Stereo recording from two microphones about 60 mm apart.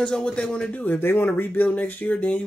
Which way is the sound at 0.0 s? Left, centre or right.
Centre.